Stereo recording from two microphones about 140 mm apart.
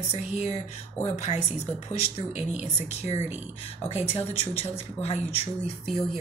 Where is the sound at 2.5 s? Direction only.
50° left (ahead or behind).